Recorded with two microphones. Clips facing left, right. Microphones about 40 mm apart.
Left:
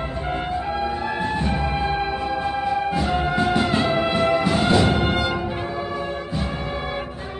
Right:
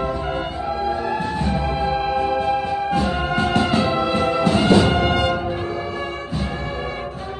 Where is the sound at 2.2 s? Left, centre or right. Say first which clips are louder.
Right 3 dB; right.